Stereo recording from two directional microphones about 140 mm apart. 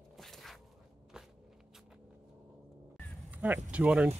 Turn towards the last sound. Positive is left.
turn(degrees=-10)  # may be behind; listen again after turning